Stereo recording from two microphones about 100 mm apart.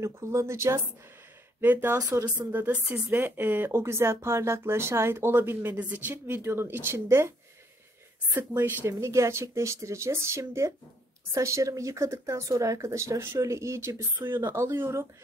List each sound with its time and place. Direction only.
0.0 s speech: 30° right (ahead or behind)
2.0 s speech: 40° right (ahead or behind)
2.2 s speech: 15° right (ahead or behind)